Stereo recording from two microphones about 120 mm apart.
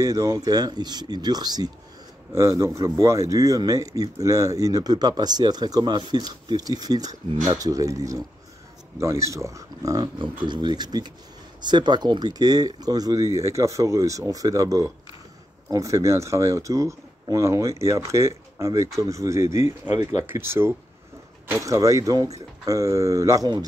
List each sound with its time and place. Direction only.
0.0 s speech: 30° right (ahead or behind)